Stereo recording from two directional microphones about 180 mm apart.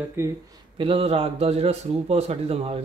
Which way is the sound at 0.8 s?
30° right (ahead or behind).